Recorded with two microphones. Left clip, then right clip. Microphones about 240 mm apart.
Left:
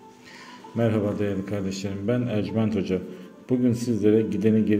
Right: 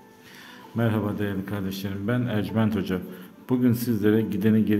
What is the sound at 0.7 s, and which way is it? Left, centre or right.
Speech, centre.